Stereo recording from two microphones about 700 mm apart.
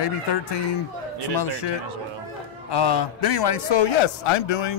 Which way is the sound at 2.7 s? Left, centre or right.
Left.